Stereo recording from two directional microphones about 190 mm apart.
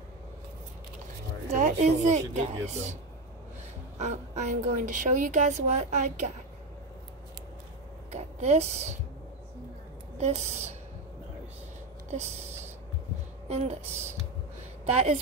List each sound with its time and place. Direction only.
1.5 s a woman's voice: 35° right (ahead or behind)
4.0 s a woman's voice: 40° right (ahead or behind)
8.1 s speech: 35° right (ahead or behind)
10.1 s a woman's voice: 35° right (ahead or behind)
12.1 s a woman's voice: 35° right (ahead or behind)